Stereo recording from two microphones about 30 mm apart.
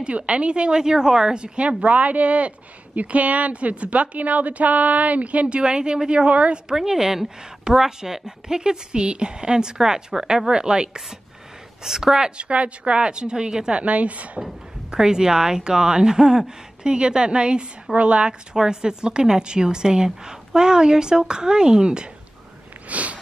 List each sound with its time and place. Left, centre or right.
0.0 s a woman's voice: right
1.4 s a woman's voice: right
1.7 s speech: right
5.6 s a woman's voice: right
6.2 s speech: right
6.7 s a woman's voice: centre
11.8 s speech: centre
12.4 s a woman's voice: right
13.7 s speech: right
15.0 s a woman's voice: right
18.5 s a woman's voice: right
22.8 s a sound: right